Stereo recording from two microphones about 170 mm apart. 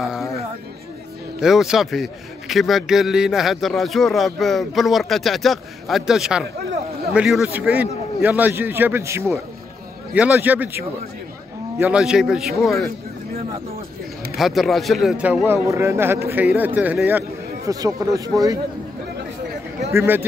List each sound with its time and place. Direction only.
0.0 s speech: centre (ahead or behind)
1.4 s a man's voice: centre (ahead or behind)
14.3 s a man's voice: centre (ahead or behind); by 18.6 s 20° right (ahead or behind)
19.9 s a man's voice: 15° right (ahead or behind)